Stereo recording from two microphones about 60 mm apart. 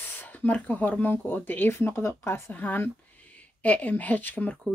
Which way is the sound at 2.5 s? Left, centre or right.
Left.